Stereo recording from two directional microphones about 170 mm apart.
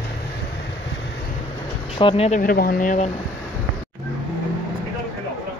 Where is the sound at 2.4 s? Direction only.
60° left (ahead or behind).